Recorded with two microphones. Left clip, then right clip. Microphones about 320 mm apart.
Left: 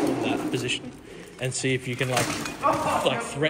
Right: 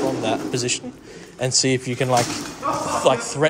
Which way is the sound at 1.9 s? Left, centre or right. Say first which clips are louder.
Right 7 dB; right.